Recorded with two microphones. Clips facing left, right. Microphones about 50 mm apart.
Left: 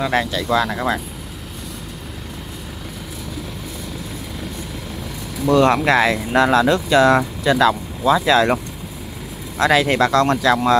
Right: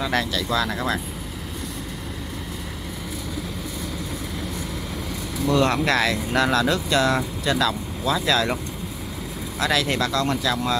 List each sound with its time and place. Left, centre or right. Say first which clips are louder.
0.0 s speech: left 4 dB; centre
5.4 s speech: left 6 dB; left
9.7 s speech: left 7 dB; left